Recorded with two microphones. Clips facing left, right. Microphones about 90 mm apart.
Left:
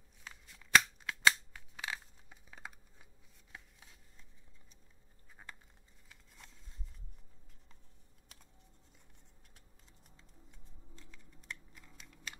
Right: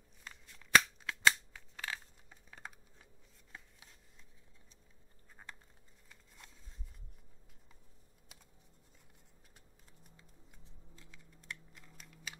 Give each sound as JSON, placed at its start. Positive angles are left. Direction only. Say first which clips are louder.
{"t": 0.2, "sound": "scissors", "louder": "even", "side_deg": 5}
{"t": 5.4, "sound": "a sound", "louder": "even", "side_deg": 0}
{"t": 10.1, "sound": "music", "louder": "even", "side_deg": -5}